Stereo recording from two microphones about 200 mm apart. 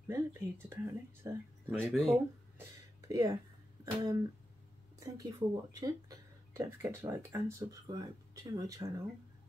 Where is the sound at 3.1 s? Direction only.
15° right (ahead or behind).